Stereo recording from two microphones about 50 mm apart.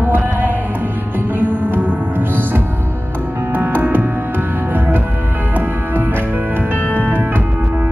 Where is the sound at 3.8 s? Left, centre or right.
Right.